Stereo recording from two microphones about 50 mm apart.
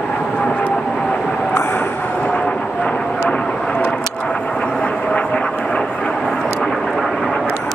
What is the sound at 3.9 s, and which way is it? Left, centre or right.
Vehicle, centre.